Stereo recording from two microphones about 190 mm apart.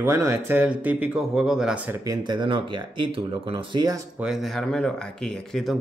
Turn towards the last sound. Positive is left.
turn(degrees=0)  # may be behind; listen again after turning